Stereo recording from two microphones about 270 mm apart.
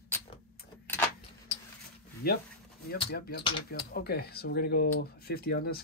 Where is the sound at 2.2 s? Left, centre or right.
Left.